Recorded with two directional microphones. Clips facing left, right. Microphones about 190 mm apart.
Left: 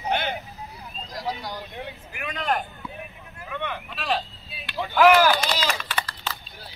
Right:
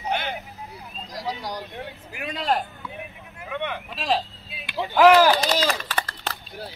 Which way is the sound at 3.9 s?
35° right (ahead or behind).